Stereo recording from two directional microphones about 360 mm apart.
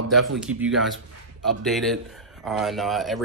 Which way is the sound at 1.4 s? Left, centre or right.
Centre.